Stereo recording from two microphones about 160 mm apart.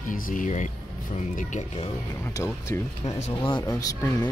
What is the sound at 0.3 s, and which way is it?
Speech, 50° left (ahead or behind).